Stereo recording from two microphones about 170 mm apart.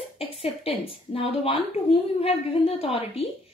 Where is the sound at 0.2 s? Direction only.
30° left (ahead or behind).